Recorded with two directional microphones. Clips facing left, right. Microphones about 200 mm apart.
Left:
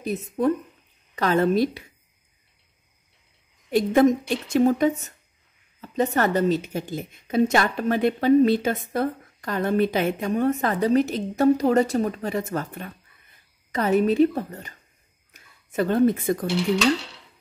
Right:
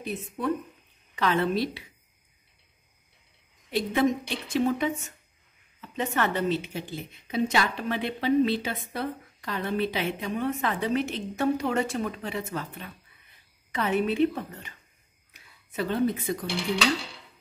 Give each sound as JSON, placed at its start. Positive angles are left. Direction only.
{"t": 0.0, "sound": "a woman's voice", "side_deg": 40}
{"t": 3.7, "sound": "a woman's voice", "side_deg": 45}